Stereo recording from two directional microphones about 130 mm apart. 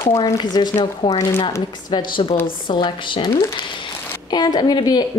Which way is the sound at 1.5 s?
30° left (ahead or behind).